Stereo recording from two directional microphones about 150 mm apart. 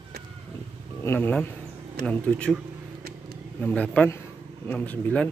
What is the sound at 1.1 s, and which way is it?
A man's voice, 15° left (ahead or behind).